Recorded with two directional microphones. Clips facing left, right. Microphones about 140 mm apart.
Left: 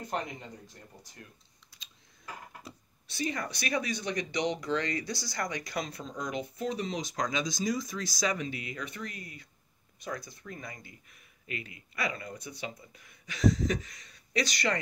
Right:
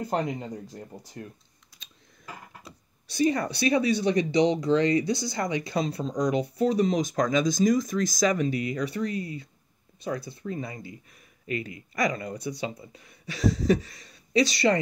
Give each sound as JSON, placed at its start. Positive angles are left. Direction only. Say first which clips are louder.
{"t": 0.0, "sound": "speech", "louder": "right 8 dB", "side_deg": -35}
{"t": 3.1, "sound": "speech", "louder": "right 10 dB", "side_deg": -35}
{"t": 11.1, "sound": "speech", "louder": "right 9 dB", "side_deg": -35}